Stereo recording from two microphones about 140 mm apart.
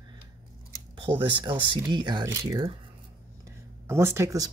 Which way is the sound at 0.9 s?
40° right (ahead or behind).